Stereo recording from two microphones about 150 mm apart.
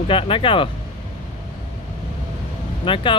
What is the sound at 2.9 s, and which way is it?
Speech, 35° left (ahead or behind).